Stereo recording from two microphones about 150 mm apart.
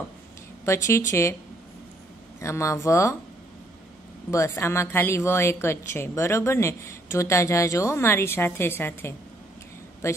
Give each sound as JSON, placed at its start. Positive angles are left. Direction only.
{"t": 0.7, "sound": "a woman's voice", "side_deg": 20}
{"t": 2.4, "sound": "speech", "side_deg": 20}
{"t": 4.3, "sound": "a woman's voice", "side_deg": 20}